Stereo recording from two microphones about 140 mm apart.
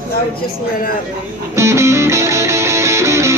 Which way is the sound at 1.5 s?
20° right (ahead or behind).